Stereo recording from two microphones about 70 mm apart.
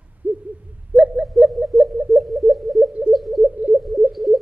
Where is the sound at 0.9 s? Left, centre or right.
Centre.